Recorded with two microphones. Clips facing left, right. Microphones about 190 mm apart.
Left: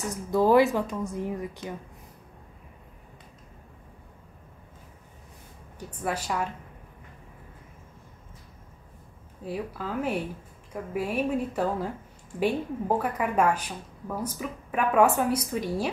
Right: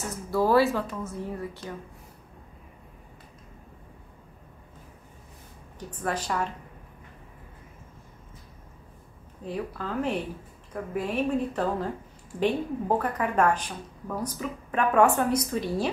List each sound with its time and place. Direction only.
0.3 s a woman's voice: 20° left (ahead or behind)
5.8 s a woman's voice: 10° left (ahead or behind)
9.4 s a woman's voice: 10° left (ahead or behind)